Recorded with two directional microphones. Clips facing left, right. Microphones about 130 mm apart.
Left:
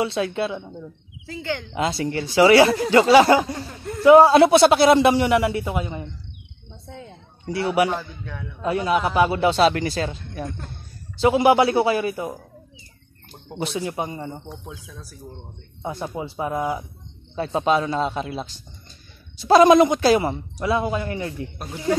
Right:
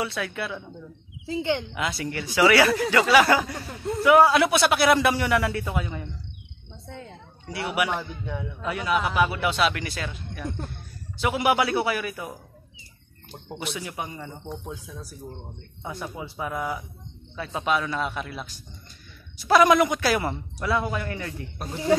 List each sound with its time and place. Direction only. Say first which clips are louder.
0.0 s speech: left 7 dB; 25° left (ahead or behind)
1.2 s speech: right 3 dB; 20° right (ahead or behind)
1.7 s speech: left 6 dB; 30° left (ahead or behind)
6.9 s speech: left 1 dB; 5° left (ahead or behind)
7.4 s a man's voice: left 7 dB; 30° left (ahead or behind)
7.9 s a man's voice: left 1 dB; 15° right (ahead or behind)
8.6 s a man's voice: left 5 dB; 30° left (ahead or behind)
13.6 s speech: left 7 dB; 30° left (ahead or behind)
14.9 s a man's voice: right 2 dB; 10° right (ahead or behind)
15.8 s speech: left 6 dB; 30° left (ahead or behind)
21.5 s speech: even; centre (ahead or behind)